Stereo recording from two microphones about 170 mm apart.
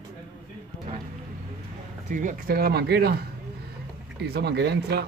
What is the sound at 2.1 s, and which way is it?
Speech, 50° right (ahead or behind).